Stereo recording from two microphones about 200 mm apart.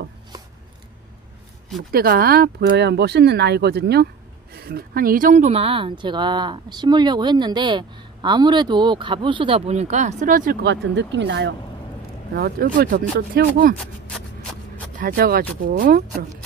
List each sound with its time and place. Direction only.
1.9 s speech: 50° right (ahead or behind)
12.4 s speech: 45° right (ahead or behind)
15.0 s speech: 45° right (ahead or behind)